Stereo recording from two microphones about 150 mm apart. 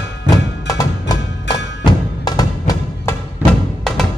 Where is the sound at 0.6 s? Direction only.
25° left (ahead or behind).